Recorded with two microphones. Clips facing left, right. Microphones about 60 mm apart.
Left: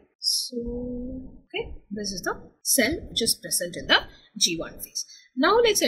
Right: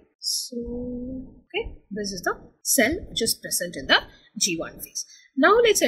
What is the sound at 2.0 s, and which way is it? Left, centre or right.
A woman's voice, right.